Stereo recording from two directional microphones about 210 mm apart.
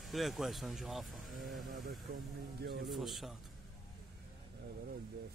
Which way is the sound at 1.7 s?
40° right (ahead or behind).